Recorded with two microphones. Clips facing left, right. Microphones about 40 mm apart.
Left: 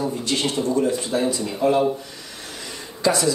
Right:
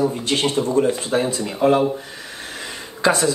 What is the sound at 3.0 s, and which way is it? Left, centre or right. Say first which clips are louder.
Speech: right 2 dB; right.